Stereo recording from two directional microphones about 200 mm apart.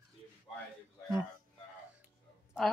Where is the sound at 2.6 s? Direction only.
Centre (ahead or behind).